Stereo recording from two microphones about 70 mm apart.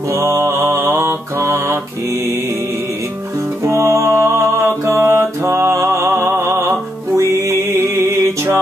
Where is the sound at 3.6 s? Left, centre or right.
Right.